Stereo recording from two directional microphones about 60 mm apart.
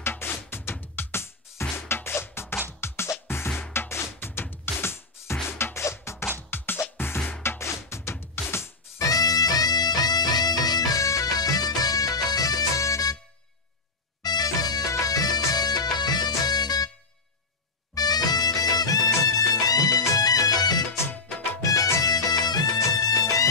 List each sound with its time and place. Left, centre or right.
0.0 s music: left
6.5 s music: left
9.0 s music: left
14.4 s music: left
17.9 s music: left
21.5 s music: left
22.0 s music: left